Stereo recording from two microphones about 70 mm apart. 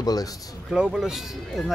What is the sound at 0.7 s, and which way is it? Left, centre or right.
Speech, centre.